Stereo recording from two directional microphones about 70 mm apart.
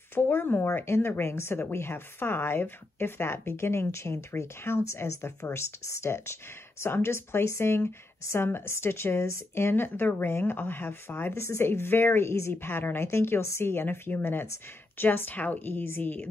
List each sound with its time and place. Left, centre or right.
0.1 s speech: left